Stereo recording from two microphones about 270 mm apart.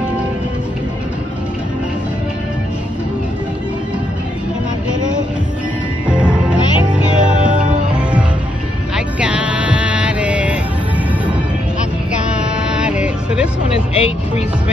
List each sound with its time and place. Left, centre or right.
6.5 s music: centre
7.2 s music: right
8.9 s music: centre
12.6 s music: centre
13.7 s vehicle: left